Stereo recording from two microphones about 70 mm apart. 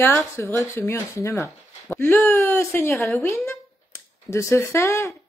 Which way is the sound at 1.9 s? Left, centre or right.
Left.